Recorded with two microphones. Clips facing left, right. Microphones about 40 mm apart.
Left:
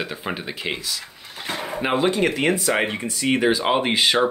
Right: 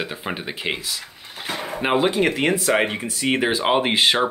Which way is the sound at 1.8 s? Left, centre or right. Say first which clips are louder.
Right 1 dB; centre.